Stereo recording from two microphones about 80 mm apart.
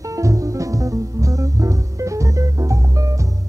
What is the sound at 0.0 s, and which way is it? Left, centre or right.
Music, right.